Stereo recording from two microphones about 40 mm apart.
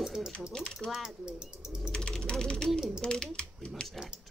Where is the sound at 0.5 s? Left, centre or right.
Centre.